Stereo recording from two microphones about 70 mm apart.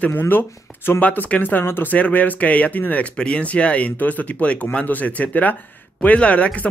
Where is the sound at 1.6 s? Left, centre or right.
Left.